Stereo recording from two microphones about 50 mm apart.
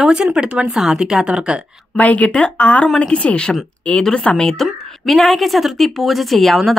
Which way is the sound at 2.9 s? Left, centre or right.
Centre.